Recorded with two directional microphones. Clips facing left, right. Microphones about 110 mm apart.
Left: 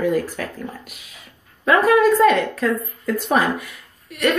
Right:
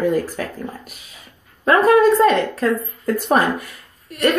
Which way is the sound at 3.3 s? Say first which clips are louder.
Right 2 dB; 45° right (ahead or behind).